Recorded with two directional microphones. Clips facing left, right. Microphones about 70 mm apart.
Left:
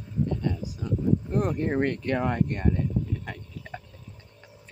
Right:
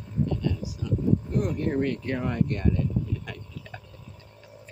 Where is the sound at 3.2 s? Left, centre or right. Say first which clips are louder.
Left 1 dB; left.